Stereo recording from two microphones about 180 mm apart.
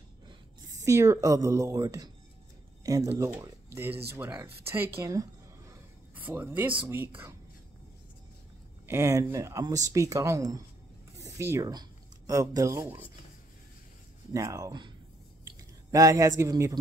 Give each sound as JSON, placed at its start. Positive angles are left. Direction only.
{"t": 0.3, "sound": "speech", "side_deg": -20}
{"t": 8.8, "sound": "speech", "side_deg": -15}
{"t": 14.3, "sound": "a man's voice", "side_deg": -20}